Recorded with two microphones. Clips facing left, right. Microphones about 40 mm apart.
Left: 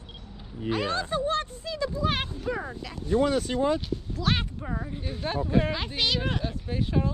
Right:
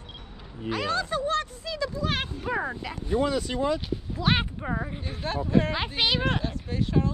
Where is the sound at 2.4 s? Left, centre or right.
Right.